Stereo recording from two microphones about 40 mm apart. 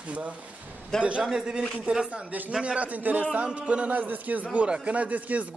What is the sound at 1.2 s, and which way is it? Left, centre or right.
Speech, centre.